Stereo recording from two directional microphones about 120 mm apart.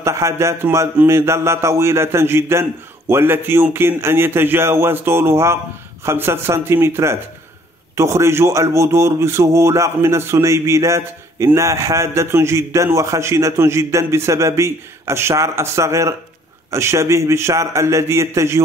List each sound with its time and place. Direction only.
0.0 s a man's voice: 25° right (ahead or behind)